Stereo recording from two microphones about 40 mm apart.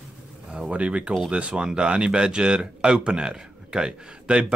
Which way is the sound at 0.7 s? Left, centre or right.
Right.